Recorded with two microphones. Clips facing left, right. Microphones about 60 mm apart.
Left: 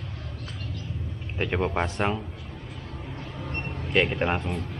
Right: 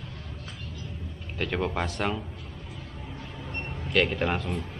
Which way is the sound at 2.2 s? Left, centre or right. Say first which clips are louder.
Left 2 dB; centre.